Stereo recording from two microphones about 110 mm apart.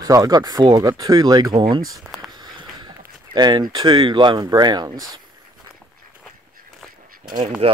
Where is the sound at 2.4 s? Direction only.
40° right (ahead or behind).